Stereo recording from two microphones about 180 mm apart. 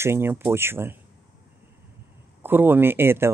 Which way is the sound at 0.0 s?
15° right (ahead or behind).